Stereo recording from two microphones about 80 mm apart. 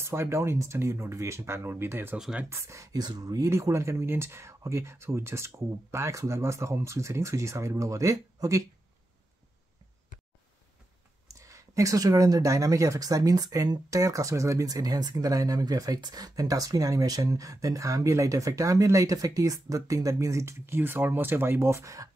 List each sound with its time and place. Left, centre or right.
0.0 s speech: right
2.5 s speech: right
3.4 s speech: right
11.2 s speech: right